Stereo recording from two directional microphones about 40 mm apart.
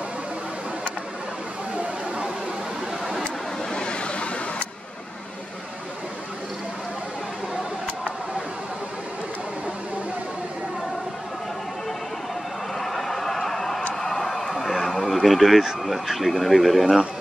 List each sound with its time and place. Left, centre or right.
3.7 s vehicle: left
12.7 s a sound: centre
15.8 s speech: centre